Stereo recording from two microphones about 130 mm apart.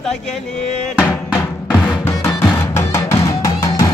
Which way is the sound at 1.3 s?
10° left (ahead or behind).